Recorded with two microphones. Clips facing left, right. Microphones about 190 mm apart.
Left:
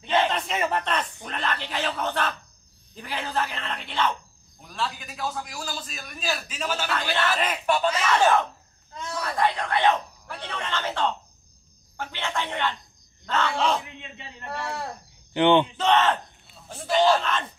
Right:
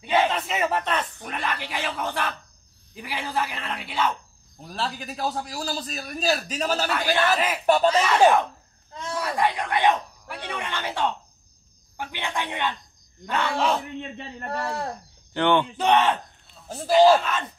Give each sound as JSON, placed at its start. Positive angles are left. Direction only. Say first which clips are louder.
{"t": 0.0, "sound": "speech", "louder": "right 1 dB", "side_deg": -5}
{"t": 4.6, "sound": "a man's voice", "louder": "right 1 dB", "side_deg": -35}
{"t": 7.2, "sound": "speech", "louder": "right 2 dB", "side_deg": -5}
{"t": 7.6, "sound": "a man's voice", "louder": "right 6 dB", "side_deg": -40}
{"t": 9.2, "sound": "speech", "louder": "even", "side_deg": -15}
{"t": 14.1, "sound": "a man's voice", "louder": "right 4 dB", "side_deg": -40}
{"t": 15.3, "sound": "speech", "louder": "left 2 dB", "side_deg": 20}
{"t": 15.8, "sound": "speech", "louder": "right 1 dB", "side_deg": -15}
{"t": 16.6, "sound": "speech", "louder": "right 5 dB", "side_deg": -35}
{"t": 16.9, "sound": "speech", "louder": "right 4 dB", "side_deg": -10}